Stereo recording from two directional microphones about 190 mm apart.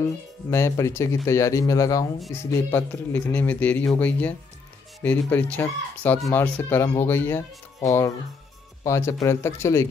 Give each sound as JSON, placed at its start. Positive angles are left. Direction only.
{"t": 0.5, "sound": "speech", "side_deg": 15}